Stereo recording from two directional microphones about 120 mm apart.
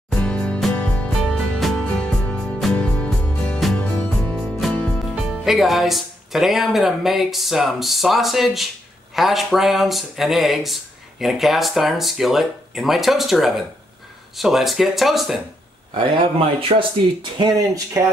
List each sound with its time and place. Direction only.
0.1 s music: 10° left (ahead or behind)
5.1 s speech: 5° right (ahead or behind)
15.9 s speech: 50° right (ahead or behind)
17.2 s speech: 35° right (ahead or behind)